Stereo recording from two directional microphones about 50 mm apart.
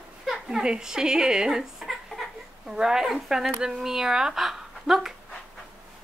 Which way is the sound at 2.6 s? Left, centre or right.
Centre.